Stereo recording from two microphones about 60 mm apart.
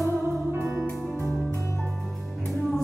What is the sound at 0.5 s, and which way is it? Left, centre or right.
Music, right.